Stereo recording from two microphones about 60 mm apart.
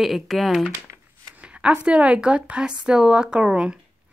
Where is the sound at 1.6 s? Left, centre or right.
Centre.